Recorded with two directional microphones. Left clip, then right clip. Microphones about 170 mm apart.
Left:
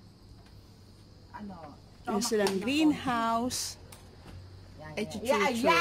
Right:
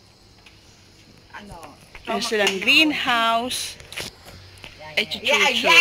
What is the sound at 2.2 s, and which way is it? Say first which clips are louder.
Speech: right 8 dB; 5° left (ahead or behind).